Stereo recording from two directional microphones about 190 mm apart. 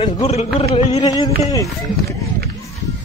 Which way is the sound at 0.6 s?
35° left (ahead or behind).